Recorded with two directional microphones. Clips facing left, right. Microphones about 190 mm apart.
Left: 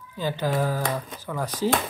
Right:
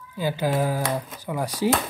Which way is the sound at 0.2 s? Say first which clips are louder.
Right 2 dB; 10° right (ahead or behind).